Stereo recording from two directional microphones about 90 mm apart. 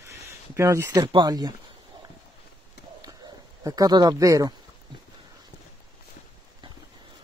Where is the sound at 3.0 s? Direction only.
45° right (ahead or behind).